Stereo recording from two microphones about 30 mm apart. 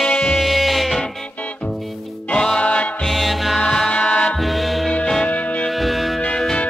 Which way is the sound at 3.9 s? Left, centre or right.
Left.